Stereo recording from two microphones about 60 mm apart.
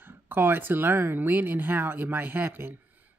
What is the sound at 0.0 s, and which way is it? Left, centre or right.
Speech, right.